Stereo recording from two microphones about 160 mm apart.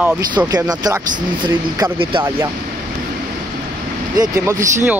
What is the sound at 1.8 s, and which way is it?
Speech, 30° right (ahead or behind).